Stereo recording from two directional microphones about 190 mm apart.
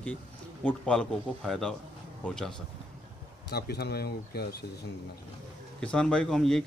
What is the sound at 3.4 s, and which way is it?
Speech, 55° left (ahead or behind).